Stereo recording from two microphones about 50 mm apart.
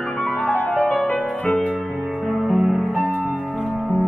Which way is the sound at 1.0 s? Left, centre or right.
Left.